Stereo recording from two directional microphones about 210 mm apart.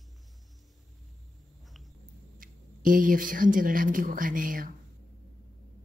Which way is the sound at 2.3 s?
40° right (ahead or behind).